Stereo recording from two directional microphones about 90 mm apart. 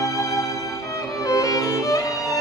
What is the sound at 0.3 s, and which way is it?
Music, centre (ahead or behind).